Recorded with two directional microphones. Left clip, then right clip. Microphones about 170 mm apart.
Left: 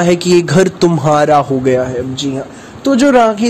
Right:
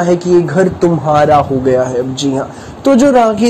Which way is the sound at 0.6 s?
40° left (ahead or behind).